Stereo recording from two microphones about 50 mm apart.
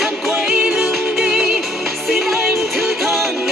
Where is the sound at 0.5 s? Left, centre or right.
Centre.